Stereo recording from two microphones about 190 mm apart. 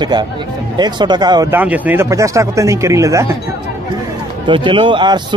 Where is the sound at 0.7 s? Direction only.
20° right (ahead or behind).